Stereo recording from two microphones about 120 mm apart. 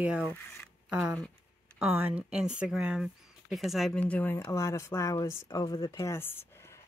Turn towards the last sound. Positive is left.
turn(degrees=20)  # may be behind; listen again after turning